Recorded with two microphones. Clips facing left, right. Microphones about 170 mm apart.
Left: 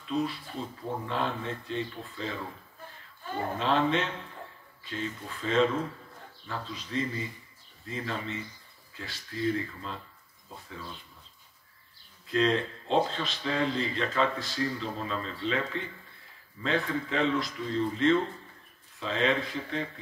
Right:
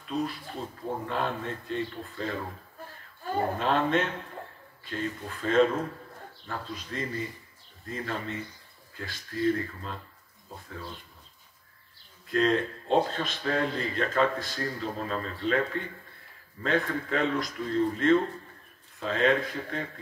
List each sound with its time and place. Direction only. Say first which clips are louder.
0.0 s speech: left 1 dB; 45° right (ahead or behind)
3.5 s speech: left 1 dB; 50° right (ahead or behind)
12.3 s speech: right 1 dB; 45° right (ahead or behind)